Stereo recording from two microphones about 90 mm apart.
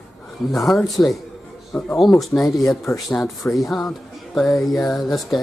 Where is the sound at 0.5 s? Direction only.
Centre (ahead or behind).